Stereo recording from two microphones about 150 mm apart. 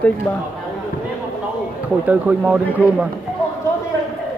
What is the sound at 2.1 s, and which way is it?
Speech, 10° right (ahead or behind).